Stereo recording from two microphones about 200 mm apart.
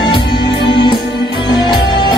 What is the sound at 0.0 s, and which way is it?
Music, 25° left (ahead or behind).